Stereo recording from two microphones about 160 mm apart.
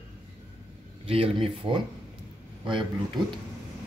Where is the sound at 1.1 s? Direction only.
35° right (ahead or behind).